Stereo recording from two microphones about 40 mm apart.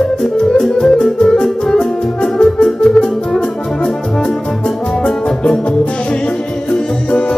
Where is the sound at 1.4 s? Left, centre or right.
Centre.